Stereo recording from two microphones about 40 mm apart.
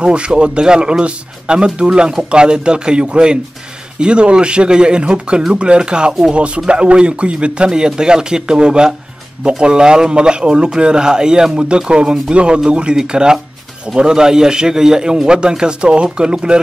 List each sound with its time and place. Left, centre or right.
0.0 s a man's voice: right